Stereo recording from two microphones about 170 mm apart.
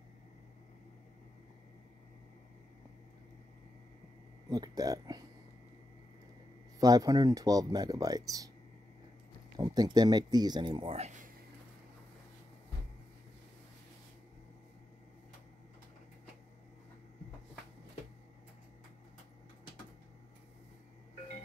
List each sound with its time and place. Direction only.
4.5 s speech: 20° right (ahead or behind)
6.8 s speech: 20° right (ahead or behind)
9.6 s speech: 25° right (ahead or behind); by 11.2 s 40° right (ahead or behind)